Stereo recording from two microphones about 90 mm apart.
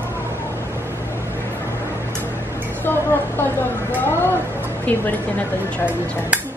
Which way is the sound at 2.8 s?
25° left (ahead or behind).